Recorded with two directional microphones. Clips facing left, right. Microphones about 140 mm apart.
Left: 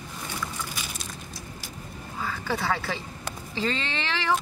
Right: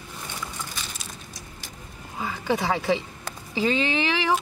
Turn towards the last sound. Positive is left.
turn(degrees=-15)  # may be behind; listen again after turning